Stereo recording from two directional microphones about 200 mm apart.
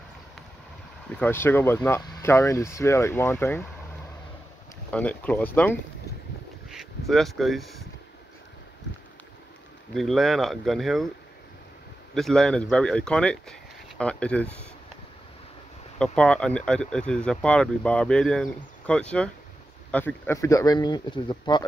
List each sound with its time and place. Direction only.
1.2 s speech: 10° left (ahead or behind)
4.9 s speech: 5° left (ahead or behind)
9.9 s speech: centre (ahead or behind)
12.1 s speech: centre (ahead or behind)
16.0 s speech: 5° left (ahead or behind); by 21.6 s 20° left (ahead or behind)